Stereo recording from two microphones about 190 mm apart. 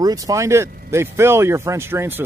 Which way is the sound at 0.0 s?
15° right (ahead or behind).